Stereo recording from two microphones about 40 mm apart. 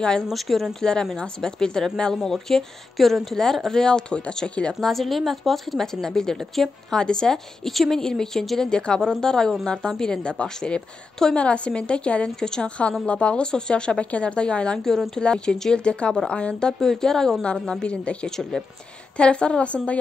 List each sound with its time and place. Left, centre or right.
0.3 s speech: centre
0.7 s speech: centre
4.7 s speech: centre
7.0 s speech: centre
7.6 s speech: centre; by 12.3 s left
12.4 s speech: centre
12.6 s a woman's voice: left
13.5 s speech: left
14.8 s speech: centre
16.8 s speech: centre
17.4 s speech: left
18.3 s speech: centre
19.1 s speech: left